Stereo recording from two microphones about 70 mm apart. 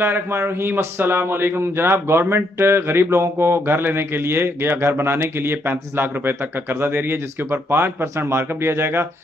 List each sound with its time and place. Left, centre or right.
0.0 s speech: right